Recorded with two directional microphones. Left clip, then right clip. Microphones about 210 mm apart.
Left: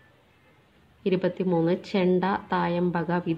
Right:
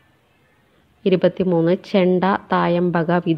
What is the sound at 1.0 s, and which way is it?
A woman's voice, 25° right (ahead or behind).